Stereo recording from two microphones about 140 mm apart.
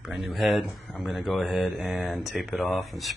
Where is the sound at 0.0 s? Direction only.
Centre (ahead or behind).